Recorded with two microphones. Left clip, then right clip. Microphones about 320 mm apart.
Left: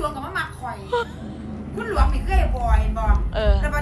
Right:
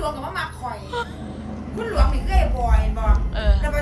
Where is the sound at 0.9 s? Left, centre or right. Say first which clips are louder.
Left 3 dB; centre.